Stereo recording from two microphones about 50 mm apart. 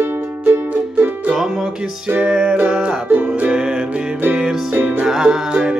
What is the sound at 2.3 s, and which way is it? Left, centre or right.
Music, centre.